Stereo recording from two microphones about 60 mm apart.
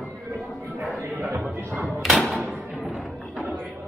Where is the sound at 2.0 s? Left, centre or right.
Centre.